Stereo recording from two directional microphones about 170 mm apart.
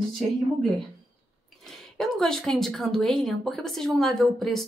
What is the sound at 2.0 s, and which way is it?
Speech, 5° left (ahead or behind).